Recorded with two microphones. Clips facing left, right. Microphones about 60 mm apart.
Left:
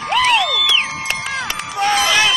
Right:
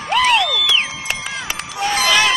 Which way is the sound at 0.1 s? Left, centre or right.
Centre.